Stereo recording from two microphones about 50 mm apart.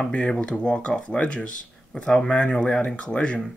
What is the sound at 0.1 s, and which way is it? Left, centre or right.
Speech, left.